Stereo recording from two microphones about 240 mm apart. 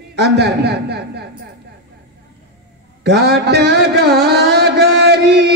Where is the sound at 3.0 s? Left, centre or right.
Right.